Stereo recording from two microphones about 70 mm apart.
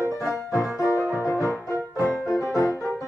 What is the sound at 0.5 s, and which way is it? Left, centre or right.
Music, left.